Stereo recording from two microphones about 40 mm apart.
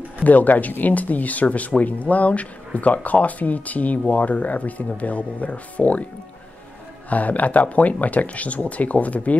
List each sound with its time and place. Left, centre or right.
0.2 s speech: left
7.1 s speech: left